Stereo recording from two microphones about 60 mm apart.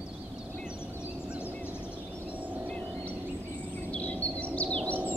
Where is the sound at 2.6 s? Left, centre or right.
Left.